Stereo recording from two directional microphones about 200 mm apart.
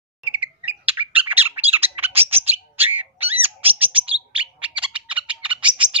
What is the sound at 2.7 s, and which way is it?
Dog, 10° right (ahead or behind).